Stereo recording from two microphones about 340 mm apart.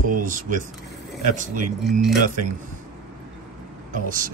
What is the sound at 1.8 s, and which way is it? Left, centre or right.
Speech, centre.